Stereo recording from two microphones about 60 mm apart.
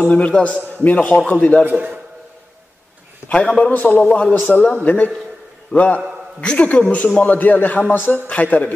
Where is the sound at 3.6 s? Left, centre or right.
Left.